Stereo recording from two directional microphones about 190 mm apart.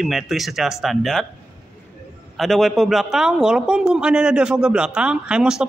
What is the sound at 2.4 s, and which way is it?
A man's voice, centre (ahead or behind).